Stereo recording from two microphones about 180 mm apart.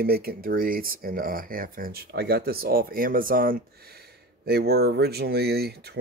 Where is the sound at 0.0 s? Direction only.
55° right (ahead or behind).